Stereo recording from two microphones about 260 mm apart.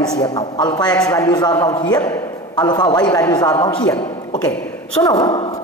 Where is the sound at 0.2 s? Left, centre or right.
Centre.